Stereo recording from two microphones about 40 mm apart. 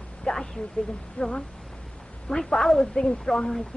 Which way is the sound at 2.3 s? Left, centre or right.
Centre.